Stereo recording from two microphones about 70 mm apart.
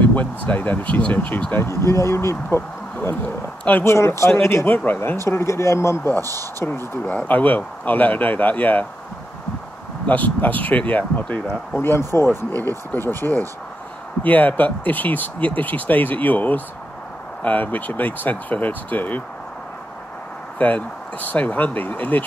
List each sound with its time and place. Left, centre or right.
0.0 s speech: left
1.6 s speech: left
3.8 s speech: left
4.6 s speech: left
5.2 s speech: left
7.1 s speech: left
10.0 s speech: left
20.5 s speech: left